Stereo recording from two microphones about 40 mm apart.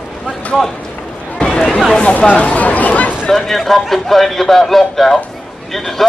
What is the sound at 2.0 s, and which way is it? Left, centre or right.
Speech, left.